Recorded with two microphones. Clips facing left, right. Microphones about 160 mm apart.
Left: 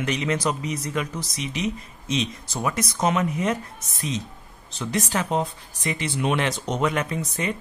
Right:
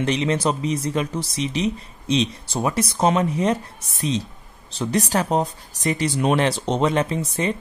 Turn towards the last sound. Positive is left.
turn(degrees=-30)  # may be behind; listen again after turning